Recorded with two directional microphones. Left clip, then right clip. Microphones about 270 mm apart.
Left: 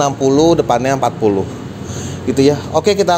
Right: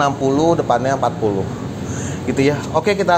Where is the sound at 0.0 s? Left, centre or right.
Left.